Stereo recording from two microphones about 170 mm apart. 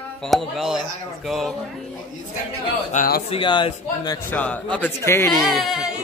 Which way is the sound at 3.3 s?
30° left (ahead or behind).